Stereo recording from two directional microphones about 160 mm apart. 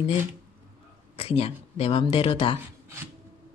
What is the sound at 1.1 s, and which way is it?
Speech, 35° left (ahead or behind).